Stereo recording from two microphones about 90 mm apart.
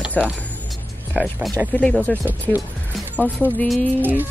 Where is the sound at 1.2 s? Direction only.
5° right (ahead or behind).